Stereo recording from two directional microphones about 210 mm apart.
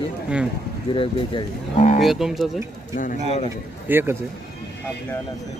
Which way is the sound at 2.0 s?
Centre (ahead or behind).